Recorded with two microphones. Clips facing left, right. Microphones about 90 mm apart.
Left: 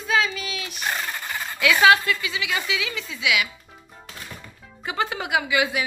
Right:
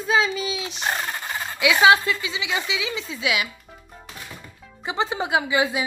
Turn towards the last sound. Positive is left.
turn(degrees=-30)  # may be behind; listen again after turning